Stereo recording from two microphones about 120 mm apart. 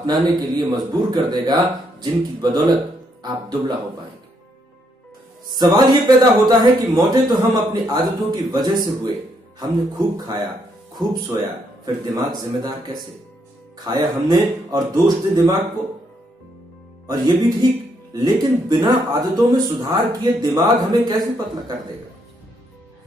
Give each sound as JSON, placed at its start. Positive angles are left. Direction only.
{"t": 0.0, "sound": "speech", "side_deg": -40}
{"t": 5.6, "sound": "speech", "side_deg": -35}
{"t": 12.2, "sound": "speech", "side_deg": -35}
{"t": 17.1, "sound": "speech", "side_deg": -35}